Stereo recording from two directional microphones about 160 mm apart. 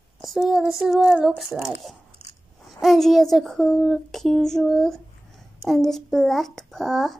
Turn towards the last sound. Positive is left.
turn(degrees=0)  # may be behind; listen again after turning